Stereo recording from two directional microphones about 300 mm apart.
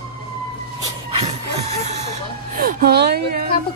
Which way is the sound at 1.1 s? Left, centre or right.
Right.